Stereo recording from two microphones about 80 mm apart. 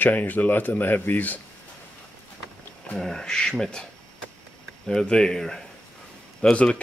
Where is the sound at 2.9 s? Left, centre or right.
Centre.